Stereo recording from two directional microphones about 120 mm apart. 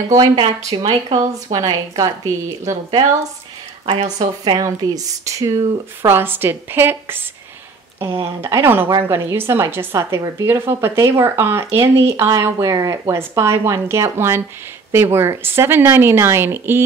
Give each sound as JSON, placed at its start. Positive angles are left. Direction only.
{"t": 0.1, "sound": "a woman's voice", "side_deg": -30}
{"t": 3.8, "sound": "speech", "side_deg": -45}
{"t": 4.6, "sound": "a woman's voice", "side_deg": -30}
{"t": 6.0, "sound": "speech", "side_deg": -20}